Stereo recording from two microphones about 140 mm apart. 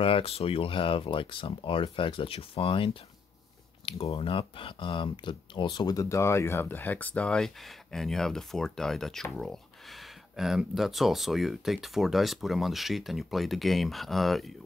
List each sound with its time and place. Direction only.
0.0 s speech: 40° left (ahead or behind); by 14.5 s centre (ahead or behind)